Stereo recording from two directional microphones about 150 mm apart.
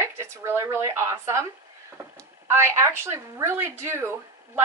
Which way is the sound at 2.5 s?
20° right (ahead or behind).